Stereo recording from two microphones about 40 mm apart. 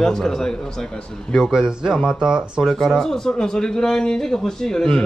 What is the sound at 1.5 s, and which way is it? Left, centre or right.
Speech, centre.